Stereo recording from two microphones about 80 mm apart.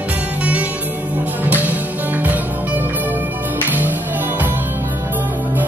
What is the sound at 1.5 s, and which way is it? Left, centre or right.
Music, right.